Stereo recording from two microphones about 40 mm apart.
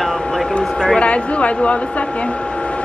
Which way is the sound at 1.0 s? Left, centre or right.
Left.